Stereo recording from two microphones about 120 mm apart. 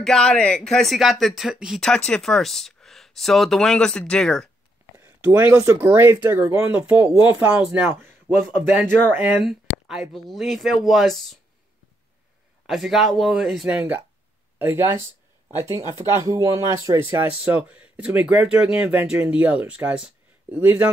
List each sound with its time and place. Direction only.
0.0 s speech: 5° left (ahead or behind)
4.9 s speech: 20° right (ahead or behind)
9.4 s speech: 5° right (ahead or behind)
12.6 s speech: centre (ahead or behind)